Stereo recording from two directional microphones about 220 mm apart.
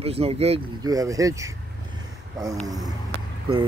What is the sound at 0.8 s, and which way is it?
Speech, 15° right (ahead or behind).